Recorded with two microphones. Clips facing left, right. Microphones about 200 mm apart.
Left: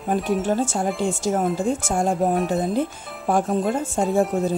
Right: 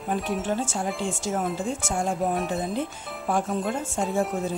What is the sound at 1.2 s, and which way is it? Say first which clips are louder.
Speech: left 6 dB; 40° left (ahead or behind).